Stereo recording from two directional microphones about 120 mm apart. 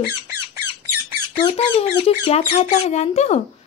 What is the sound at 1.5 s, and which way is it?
Speech, 60° left (ahead or behind).